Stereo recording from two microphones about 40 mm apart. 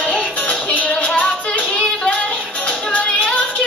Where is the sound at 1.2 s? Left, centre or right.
Left.